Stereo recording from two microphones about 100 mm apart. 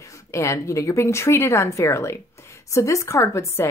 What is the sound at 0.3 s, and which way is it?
A woman's voice, 30° left (ahead or behind).